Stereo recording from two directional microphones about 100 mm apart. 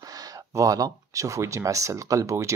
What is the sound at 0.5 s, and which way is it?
Speech, 35° right (ahead or behind).